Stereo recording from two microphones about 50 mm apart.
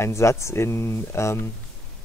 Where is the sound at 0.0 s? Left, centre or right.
Left.